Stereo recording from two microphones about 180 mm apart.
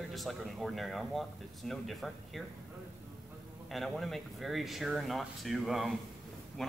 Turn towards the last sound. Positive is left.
turn(degrees=0)  # may be behind; listen again after turning